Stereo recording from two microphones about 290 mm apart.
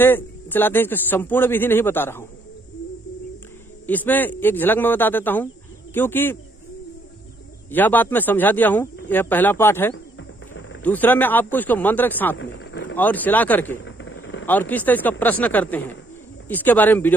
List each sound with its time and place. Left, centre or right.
0.0 s a man's voice: centre
3.8 s a man's voice: centre
7.7 s a man's voice: centre
12.4 s a sound: left
12.9 s speech: centre
13.8 s a sound: left
14.4 s speech: centre